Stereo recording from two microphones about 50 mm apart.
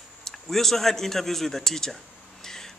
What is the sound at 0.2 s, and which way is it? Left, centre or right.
A man's voice, centre.